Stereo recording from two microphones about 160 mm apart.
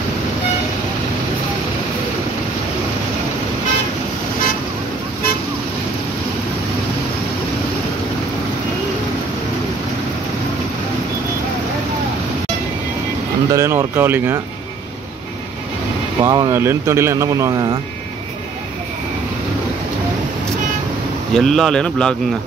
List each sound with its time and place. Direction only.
13.5 s speech: 20° right (ahead or behind)
16.2 s speech: 25° right (ahead or behind)
21.3 s speech: centre (ahead or behind)